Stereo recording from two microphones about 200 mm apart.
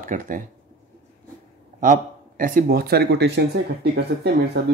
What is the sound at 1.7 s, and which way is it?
Speech, 40° right (ahead or behind).